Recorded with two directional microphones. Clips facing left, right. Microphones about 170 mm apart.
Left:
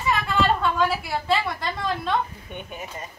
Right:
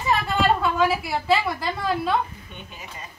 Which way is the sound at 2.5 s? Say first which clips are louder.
Left 6 dB; 55° left (ahead or behind).